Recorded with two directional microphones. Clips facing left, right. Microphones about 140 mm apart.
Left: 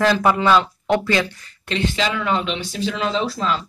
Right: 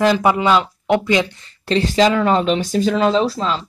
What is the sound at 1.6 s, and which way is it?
Speech, 35° right (ahead or behind).